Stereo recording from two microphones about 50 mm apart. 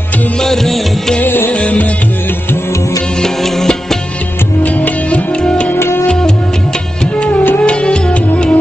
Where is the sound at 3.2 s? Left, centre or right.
Centre.